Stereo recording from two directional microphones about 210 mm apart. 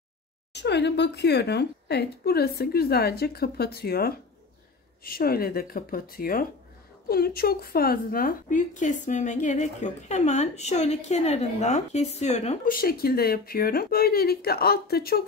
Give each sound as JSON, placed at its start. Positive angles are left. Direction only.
{"t": 0.5, "sound": "a woman's voice", "side_deg": 55}
{"t": 12.8, "sound": "a woman's voice", "side_deg": 45}